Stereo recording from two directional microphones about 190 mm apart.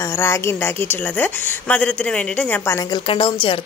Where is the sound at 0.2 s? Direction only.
15° left (ahead or behind).